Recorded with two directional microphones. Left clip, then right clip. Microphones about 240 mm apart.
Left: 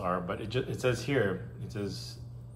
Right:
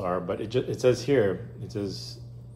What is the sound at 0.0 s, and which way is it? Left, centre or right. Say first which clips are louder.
Speech: right 4 dB; centre.